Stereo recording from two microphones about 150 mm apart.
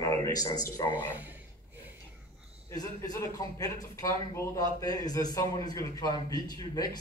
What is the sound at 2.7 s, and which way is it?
Speech, 25° left (ahead or behind).